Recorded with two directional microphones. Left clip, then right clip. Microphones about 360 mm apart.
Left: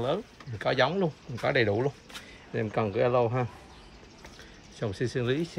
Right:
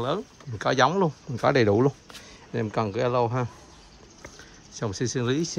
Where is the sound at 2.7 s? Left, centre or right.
Centre.